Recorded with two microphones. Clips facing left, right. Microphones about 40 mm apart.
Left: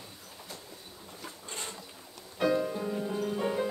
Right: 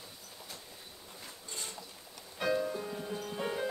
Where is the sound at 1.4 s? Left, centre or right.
Left.